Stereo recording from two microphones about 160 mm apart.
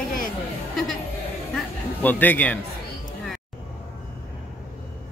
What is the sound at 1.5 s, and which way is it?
Music, 10° left (ahead or behind).